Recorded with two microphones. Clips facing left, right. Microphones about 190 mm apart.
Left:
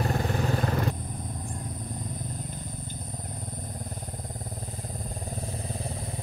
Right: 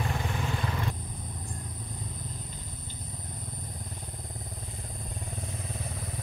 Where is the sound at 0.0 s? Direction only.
40° left (ahead or behind).